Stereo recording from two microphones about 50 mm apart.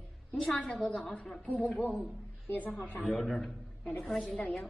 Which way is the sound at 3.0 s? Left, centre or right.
Centre.